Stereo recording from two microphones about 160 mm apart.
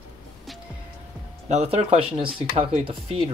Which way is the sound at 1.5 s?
45° right (ahead or behind).